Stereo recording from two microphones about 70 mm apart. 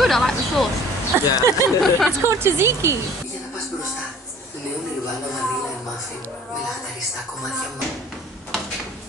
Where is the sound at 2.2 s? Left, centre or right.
Right.